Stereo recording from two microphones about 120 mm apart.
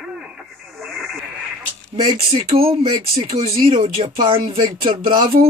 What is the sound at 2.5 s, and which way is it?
Speech, 50° right (ahead or behind).